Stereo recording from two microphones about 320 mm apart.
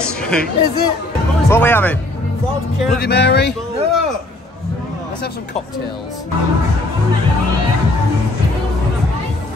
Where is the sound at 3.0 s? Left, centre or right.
Left.